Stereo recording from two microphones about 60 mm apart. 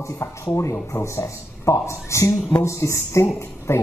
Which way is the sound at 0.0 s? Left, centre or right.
Left.